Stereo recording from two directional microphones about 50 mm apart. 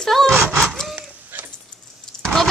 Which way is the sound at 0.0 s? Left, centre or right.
Centre.